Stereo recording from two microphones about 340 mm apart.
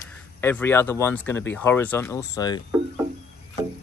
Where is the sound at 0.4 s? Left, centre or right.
Centre.